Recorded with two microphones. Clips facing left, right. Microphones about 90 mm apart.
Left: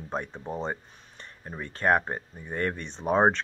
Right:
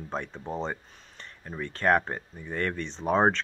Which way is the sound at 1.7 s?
20° left (ahead or behind).